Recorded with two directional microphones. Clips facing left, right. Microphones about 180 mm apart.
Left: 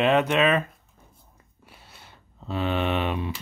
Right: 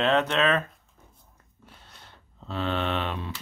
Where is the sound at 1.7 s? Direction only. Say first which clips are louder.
Left 1 dB; 10° left (ahead or behind).